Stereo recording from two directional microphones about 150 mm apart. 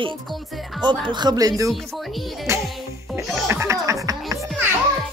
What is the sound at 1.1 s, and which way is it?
Speech, 30° right (ahead or behind).